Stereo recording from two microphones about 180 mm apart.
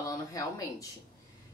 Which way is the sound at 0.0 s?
20° left (ahead or behind).